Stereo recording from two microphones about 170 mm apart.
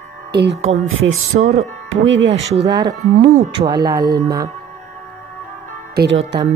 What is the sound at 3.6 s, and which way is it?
Speech, 40° right (ahead or behind).